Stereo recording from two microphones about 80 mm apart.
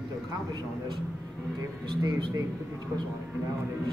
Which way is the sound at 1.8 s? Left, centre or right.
Right.